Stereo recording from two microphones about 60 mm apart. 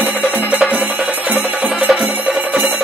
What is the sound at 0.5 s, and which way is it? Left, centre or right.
Music, right.